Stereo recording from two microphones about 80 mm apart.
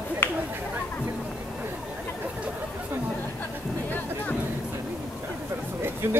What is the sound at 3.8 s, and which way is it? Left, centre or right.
Music, left.